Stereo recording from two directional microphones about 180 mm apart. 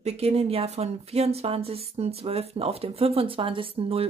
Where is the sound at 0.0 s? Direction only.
35° right (ahead or behind).